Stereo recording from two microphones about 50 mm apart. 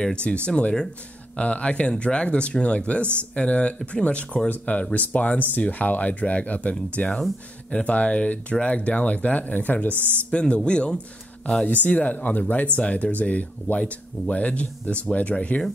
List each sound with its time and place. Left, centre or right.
0.1 s speech: left
9.9 s speech: right
10.3 s speech: left
11.6 s speech: left